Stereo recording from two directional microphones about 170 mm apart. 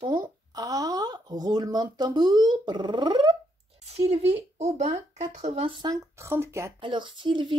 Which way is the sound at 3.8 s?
35° right (ahead or behind).